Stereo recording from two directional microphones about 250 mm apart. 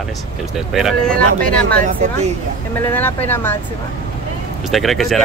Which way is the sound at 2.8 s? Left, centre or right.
Centre.